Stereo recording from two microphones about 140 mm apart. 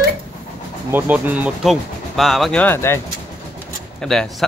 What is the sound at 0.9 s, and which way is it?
Speech, 15° right (ahead or behind).